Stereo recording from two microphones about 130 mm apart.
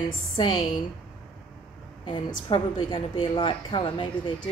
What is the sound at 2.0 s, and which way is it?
A woman's voice, 40° left (ahead or behind).